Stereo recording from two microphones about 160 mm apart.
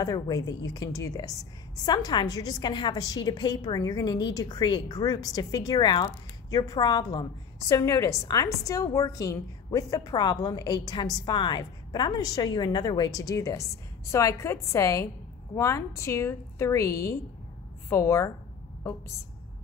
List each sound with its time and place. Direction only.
0.0 s a woman's voice: 20° left (ahead or behind)